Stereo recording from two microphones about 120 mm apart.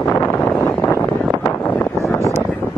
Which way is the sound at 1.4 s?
15° left (ahead or behind).